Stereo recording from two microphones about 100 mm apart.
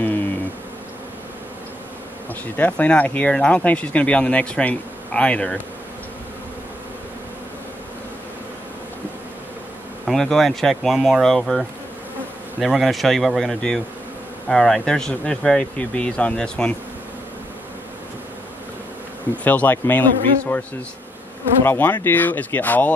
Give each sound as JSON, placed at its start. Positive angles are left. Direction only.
{"t": 2.5, "sound": "speech", "side_deg": 15}
{"t": 10.0, "sound": "speech", "side_deg": 5}
{"t": 19.4, "sound": "speech", "side_deg": 15}
{"t": 21.6, "sound": "speech", "side_deg": 20}